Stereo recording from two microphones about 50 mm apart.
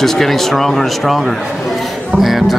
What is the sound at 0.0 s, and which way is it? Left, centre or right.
Speech, centre.